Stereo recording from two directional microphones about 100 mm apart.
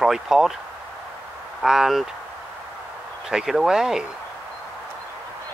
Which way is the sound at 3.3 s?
5° right (ahead or behind).